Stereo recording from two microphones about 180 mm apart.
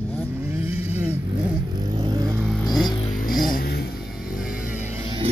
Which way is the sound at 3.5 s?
60° left (ahead or behind).